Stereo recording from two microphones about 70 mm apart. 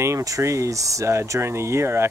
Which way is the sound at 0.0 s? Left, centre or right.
Right.